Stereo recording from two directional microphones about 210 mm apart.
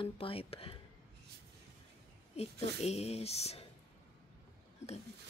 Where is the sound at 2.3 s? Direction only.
30° left (ahead or behind).